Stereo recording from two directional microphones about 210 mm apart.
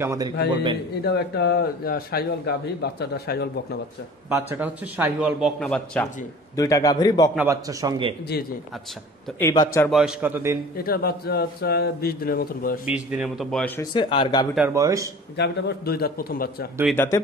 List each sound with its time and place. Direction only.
0.0 s a man's voice: 15° right (ahead or behind)
1.0 s a man's voice: 50° left (ahead or behind)
4.3 s a man's voice: 10° right (ahead or behind)
6.5 s a man's voice: 15° left (ahead or behind)
7.3 s a man's voice: 15° right (ahead or behind)
9.4 s a man's voice: 15° left (ahead or behind)
9.8 s a man's voice: centre (ahead or behind)
10.8 s a man's voice: 45° left (ahead or behind)
12.8 s a man's voice: 5° right (ahead or behind)
13.7 s speech: 25° left (ahead or behind)
14.7 s a man's voice: 15° right (ahead or behind)
15.3 s a man's voice: 50° left (ahead or behind)
16.9 s a man's voice: 10° left (ahead or behind)